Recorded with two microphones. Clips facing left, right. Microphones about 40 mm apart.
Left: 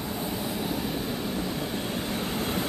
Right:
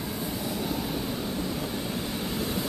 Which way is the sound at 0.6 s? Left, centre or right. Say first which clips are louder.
Even; centre.